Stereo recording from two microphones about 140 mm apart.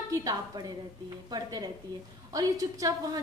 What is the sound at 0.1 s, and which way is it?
Speech, 25° right (ahead or behind).